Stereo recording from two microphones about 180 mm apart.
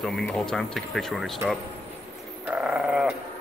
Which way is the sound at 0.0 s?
Centre (ahead or behind).